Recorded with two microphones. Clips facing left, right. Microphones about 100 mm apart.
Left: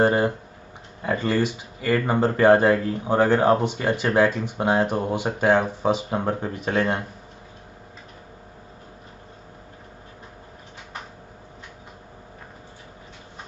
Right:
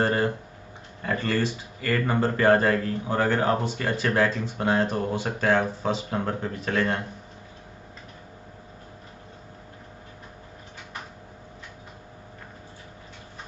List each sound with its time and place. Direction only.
0.0 s tick-tock: 20° left (ahead or behind)
1.0 s speech: 15° left (ahead or behind)